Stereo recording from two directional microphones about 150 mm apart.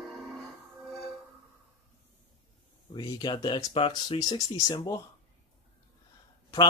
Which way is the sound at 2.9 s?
25° left (ahead or behind).